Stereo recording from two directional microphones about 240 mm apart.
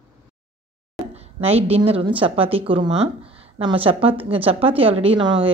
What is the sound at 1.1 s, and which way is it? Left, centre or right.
A woman's voice, right.